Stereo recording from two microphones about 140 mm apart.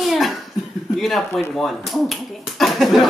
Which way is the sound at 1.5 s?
Centre (ahead or behind).